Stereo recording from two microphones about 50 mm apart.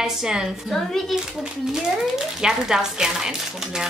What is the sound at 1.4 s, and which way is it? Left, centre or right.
Speech, centre.